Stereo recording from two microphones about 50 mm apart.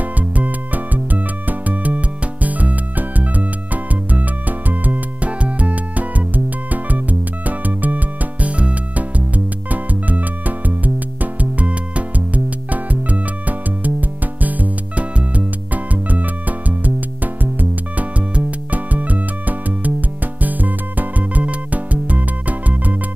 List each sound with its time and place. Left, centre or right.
0.9 s music: right